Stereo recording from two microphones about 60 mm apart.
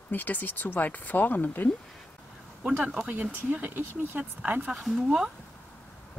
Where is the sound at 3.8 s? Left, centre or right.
Right.